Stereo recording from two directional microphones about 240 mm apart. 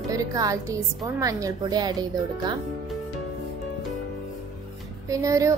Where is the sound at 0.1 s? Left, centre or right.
Centre.